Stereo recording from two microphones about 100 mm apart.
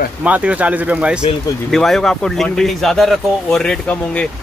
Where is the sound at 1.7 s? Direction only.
5° left (ahead or behind).